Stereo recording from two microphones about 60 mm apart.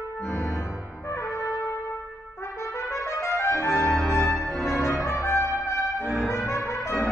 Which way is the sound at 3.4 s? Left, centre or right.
Left.